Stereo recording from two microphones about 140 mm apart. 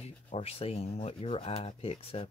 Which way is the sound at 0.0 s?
45° left (ahead or behind).